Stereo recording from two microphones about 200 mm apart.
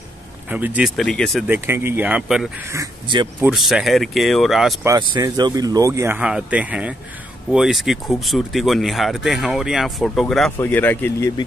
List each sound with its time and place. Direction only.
0.5 s speech: 10° right (ahead or behind)
1.5 s speech: 10° right (ahead or behind)
2.7 s speech: 20° right (ahead or behind)
3.4 s speech: centre (ahead or behind)
4.8 s speech: 20° right (ahead or behind); by 11.2 s 10° left (ahead or behind)